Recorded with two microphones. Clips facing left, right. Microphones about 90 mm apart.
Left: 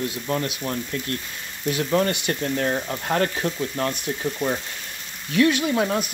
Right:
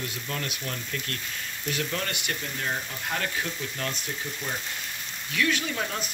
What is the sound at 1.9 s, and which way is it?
Speech, 35° left (ahead or behind).